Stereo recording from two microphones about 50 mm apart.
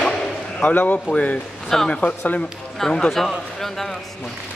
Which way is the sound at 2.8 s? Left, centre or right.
Centre.